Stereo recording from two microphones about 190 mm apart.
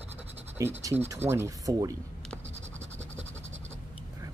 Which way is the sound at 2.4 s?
35° right (ahead or behind).